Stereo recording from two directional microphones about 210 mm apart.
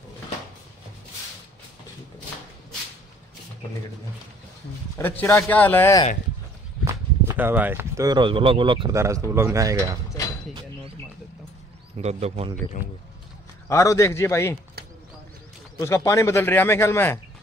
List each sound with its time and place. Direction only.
5.2 s a man's voice: 10° left (ahead or behind)
6.8 s speech: 10° right (ahead or behind)
12.0 s speech: 30° right (ahead or behind)
13.7 s a man's voice: 15° left (ahead or behind)
15.8 s a man's voice: 15° left (ahead or behind)